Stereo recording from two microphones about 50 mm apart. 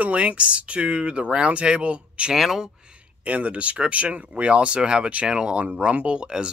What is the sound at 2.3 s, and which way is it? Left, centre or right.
Speech, centre.